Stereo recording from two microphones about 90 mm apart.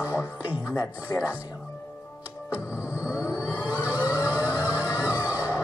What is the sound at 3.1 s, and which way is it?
Vehicle, 35° left (ahead or behind).